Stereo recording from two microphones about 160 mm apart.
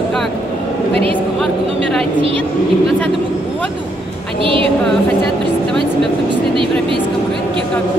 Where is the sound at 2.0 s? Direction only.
35° right (ahead or behind).